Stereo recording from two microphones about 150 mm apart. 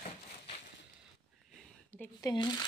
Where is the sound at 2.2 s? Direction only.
25° left (ahead or behind).